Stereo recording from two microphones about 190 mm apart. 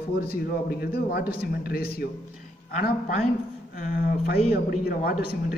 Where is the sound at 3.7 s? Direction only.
50° left (ahead or behind).